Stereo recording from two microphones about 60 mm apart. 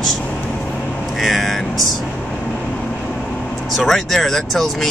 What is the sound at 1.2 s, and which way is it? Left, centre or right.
Speech, centre.